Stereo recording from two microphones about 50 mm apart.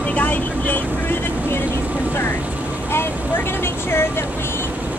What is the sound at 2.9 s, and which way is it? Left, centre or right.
Speech, left.